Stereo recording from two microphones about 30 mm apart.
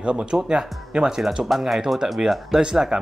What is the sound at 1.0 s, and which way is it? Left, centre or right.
Speech, right.